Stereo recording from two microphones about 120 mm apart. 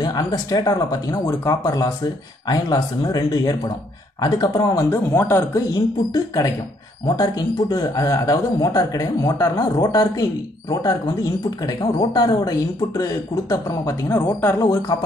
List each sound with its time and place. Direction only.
0.0 s speech: 35° left (ahead or behind)
5.7 s speech: 30° left (ahead or behind)